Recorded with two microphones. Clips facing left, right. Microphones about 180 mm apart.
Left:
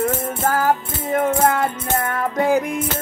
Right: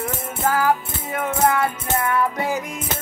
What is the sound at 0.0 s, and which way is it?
Music, 45° left (ahead or behind).